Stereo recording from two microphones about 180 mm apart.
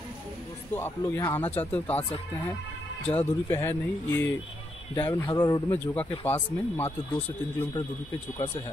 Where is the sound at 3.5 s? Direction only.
15° left (ahead or behind).